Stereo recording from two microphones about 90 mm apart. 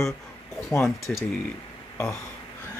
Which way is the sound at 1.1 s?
15° left (ahead or behind).